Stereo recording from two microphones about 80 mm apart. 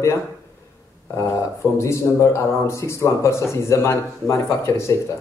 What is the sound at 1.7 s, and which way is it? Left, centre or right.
A man's voice, left.